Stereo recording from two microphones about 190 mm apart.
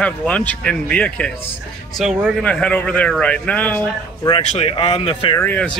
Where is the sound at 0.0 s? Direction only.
5° left (ahead or behind).